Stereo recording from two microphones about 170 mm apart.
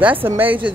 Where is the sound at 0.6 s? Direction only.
10° right (ahead or behind).